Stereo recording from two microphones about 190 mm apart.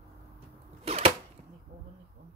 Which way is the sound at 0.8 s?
30° right (ahead or behind).